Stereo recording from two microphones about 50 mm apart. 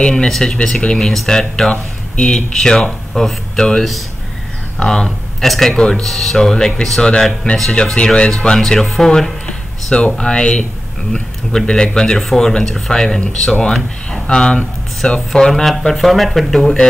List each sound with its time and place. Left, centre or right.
0.0 s speech: centre
1.7 s speech: left
2.3 s speech: centre
4.8 s speech: centre